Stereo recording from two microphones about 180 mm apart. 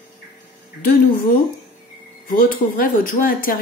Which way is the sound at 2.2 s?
50° left (ahead or behind).